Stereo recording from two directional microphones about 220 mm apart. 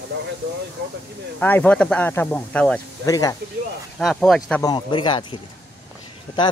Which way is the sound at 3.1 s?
15° left (ahead or behind).